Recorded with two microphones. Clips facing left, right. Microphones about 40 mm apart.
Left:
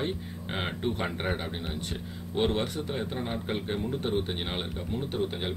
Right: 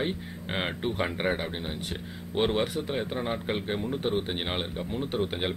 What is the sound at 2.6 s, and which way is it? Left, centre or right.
Speech, centre.